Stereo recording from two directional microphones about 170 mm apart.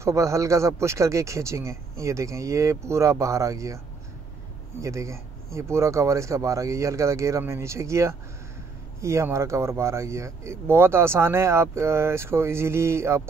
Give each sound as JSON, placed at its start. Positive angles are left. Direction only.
{"t": 0.0, "sound": "speech", "side_deg": -15}
{"t": 4.8, "sound": "speech", "side_deg": -15}